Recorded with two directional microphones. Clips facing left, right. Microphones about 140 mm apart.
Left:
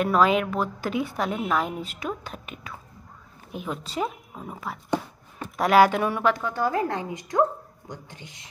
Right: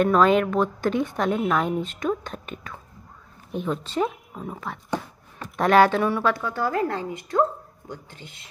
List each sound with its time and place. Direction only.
0.0 s a woman's voice: 5° left (ahead or behind)
8.1 s a woman's voice: 15° left (ahead or behind)